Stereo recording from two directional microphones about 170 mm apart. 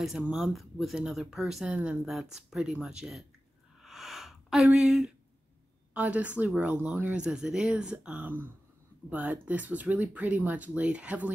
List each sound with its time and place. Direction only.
0.0 s speech: 5° right (ahead or behind)
3.8 s a sound: centre (ahead or behind)
5.9 s speech: 10° right (ahead or behind)